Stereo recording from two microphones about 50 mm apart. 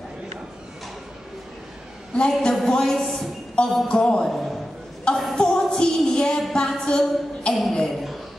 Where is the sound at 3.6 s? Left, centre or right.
Left.